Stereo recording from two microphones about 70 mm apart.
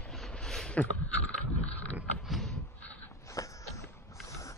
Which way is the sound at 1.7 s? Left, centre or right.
Left.